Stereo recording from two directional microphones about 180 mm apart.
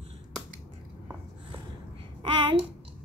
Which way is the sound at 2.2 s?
30° right (ahead or behind).